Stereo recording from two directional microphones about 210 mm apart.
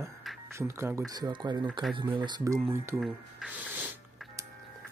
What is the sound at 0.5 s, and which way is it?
Speech, 10° right (ahead or behind).